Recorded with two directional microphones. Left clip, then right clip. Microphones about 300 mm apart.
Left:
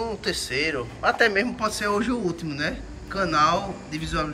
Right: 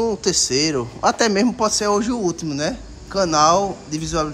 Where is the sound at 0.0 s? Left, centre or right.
Centre.